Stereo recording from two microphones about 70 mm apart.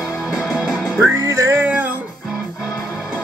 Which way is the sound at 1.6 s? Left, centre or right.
Right.